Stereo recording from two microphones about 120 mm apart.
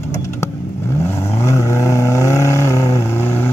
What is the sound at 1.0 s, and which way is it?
Vehicle, 25° left (ahead or behind).